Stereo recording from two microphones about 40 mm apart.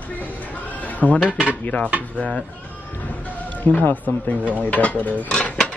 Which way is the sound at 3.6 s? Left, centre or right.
Left.